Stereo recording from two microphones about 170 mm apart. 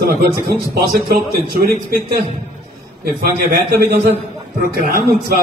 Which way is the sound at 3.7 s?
65° right (ahead or behind).